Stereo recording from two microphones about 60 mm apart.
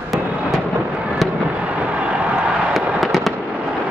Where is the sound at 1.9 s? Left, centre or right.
Right.